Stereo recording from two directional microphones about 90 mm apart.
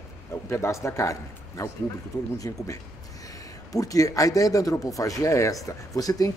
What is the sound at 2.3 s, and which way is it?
Speech, 40° left (ahead or behind).